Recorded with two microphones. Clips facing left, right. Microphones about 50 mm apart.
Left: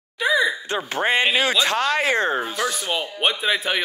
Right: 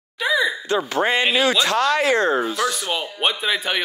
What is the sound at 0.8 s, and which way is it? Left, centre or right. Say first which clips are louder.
Speech: left 2 dB; left.